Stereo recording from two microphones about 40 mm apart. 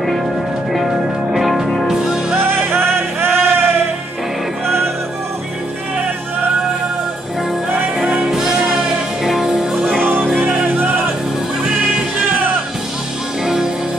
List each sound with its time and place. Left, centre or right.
0.7 s music: centre
2.3 s music: right
8.3 s music: centre
10.0 s music: right